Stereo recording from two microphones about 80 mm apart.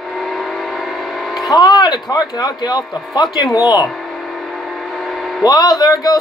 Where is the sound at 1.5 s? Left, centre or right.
Left.